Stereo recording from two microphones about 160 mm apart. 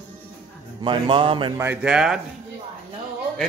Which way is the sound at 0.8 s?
30° right (ahead or behind).